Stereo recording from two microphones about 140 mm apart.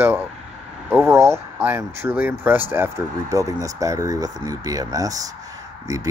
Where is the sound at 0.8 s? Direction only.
15° right (ahead or behind).